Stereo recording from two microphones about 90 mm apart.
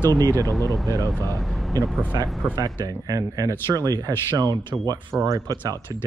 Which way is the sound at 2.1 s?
45° right (ahead or behind).